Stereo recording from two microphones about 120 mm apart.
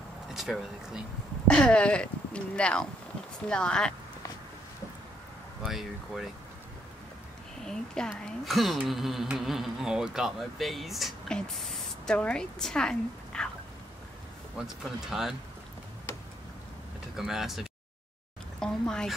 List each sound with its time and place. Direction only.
0.3 s speech: 5° right (ahead or behind)
1.5 s speech: 10° left (ahead or behind)
5.6 s a woman's voice: centre (ahead or behind)
7.6 s a woman's voice: 5° left (ahead or behind)
14.6 s a woman's voice: 5° right (ahead or behind)
16.1 s tick-tock: 25° left (ahead or behind)
17.2 s a woman's voice: centre (ahead or behind)